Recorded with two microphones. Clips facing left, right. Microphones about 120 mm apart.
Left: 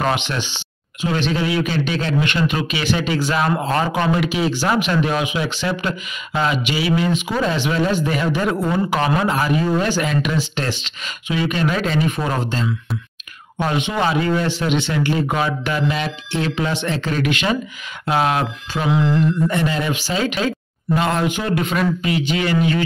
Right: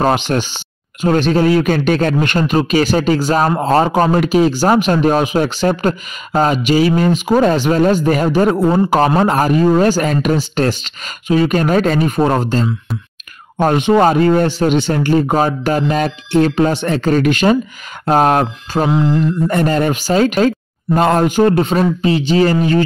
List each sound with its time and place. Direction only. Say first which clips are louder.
0.0 s speech: right 6 dB; 40° right (ahead or behind)